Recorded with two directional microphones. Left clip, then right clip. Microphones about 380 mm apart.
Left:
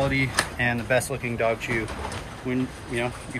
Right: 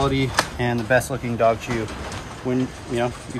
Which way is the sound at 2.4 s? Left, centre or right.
Centre.